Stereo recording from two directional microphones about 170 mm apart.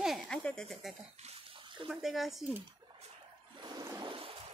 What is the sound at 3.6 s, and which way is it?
Toilet flush, 20° right (ahead or behind).